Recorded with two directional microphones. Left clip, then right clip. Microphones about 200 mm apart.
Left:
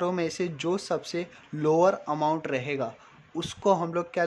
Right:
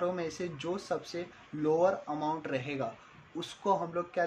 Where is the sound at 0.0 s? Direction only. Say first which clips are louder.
Left 6 dB; 40° left (ahead or behind).